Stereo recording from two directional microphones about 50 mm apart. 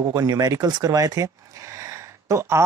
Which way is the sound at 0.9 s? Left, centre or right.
Right.